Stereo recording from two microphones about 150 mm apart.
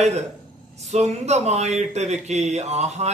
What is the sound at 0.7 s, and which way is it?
Speech, 45° right (ahead or behind).